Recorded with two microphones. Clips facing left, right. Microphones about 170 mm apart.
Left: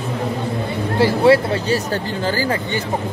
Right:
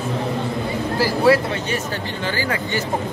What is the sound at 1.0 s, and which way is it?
Speech, 30° left (ahead or behind).